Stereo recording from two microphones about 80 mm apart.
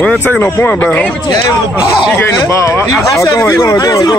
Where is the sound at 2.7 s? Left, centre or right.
Left.